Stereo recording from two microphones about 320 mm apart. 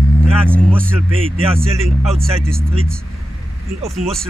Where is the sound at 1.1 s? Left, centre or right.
Centre.